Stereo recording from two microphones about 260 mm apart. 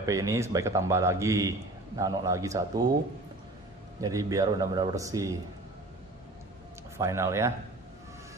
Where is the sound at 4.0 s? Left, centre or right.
Centre.